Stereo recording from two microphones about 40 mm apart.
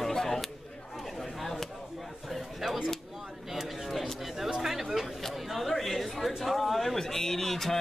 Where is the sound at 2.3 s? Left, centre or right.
Centre.